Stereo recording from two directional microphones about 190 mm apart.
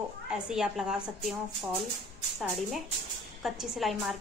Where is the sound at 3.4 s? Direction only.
Centre (ahead or behind).